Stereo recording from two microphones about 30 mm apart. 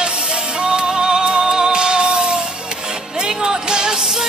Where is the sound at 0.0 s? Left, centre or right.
Right.